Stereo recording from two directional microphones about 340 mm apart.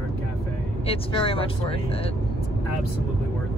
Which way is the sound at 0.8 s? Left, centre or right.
Centre.